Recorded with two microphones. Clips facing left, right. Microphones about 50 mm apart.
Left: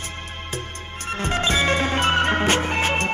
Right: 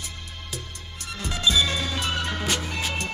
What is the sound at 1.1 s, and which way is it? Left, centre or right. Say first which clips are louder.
Music: left 2 dB; left.